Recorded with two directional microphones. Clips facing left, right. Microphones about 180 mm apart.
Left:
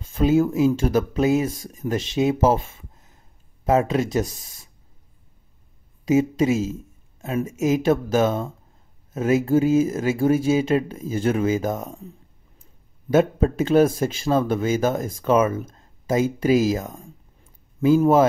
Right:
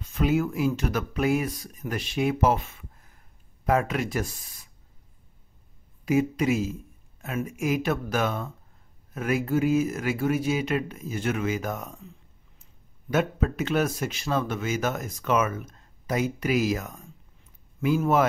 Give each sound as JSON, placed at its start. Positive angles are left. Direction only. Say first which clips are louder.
{"t": 0.0, "sound": "a man's voice", "louder": "left 6 dB", "side_deg": 30}
{"t": 6.0, "sound": "a man's voice", "louder": "left 5 dB", "side_deg": 25}
{"t": 13.1, "sound": "a man's voice", "louder": "left 7 dB", "side_deg": 30}